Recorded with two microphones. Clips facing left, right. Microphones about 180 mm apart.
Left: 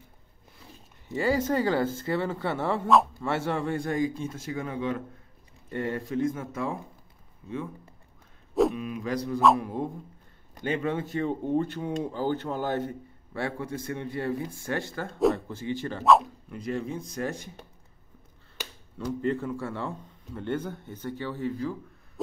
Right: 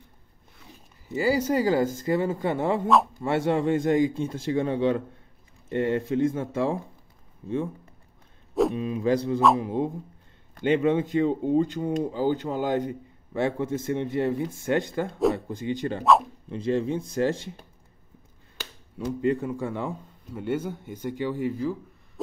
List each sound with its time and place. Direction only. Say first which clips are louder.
1.0 s speech: right 2 dB; 5° right (ahead or behind); by 7.7 s 25° right (ahead or behind)
8.7 s speech: right 7 dB; 30° right (ahead or behind)
16.0 s speech: left 1 dB; centre (ahead or behind)
16.4 s speech: right 6 dB; 25° right (ahead or behind)
19.2 s speech: right 4 dB; 15° right (ahead or behind)